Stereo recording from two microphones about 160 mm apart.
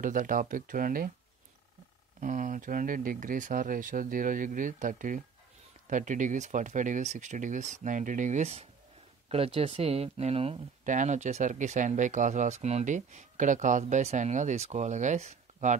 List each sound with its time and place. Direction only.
0.0 s speech: 55° right (ahead or behind)
2.1 s speech: 55° right (ahead or behind); by 10.9 s 35° right (ahead or behind)
10.9 s speech: 50° right (ahead or behind)